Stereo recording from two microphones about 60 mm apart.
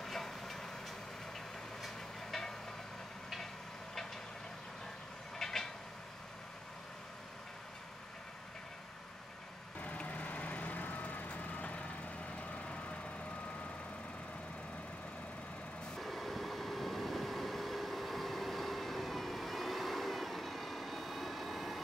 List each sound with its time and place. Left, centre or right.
0.0 s train: centre
2.3 s vehicle: centre
5.4 s vehicle: centre
9.8 s vehicle: left
16.0 s vehicle: centre